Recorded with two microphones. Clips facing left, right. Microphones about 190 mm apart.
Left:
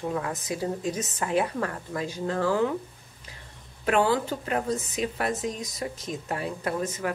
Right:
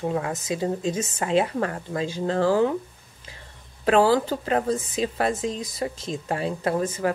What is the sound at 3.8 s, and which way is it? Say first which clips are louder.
Speech: right 5 dB; 35° right (ahead or behind).